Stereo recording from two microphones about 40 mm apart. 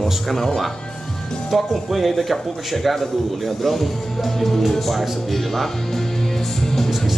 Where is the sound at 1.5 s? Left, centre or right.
Centre.